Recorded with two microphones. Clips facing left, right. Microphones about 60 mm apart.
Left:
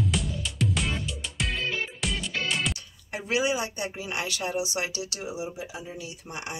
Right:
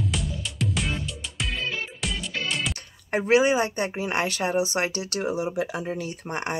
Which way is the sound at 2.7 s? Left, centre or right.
Right.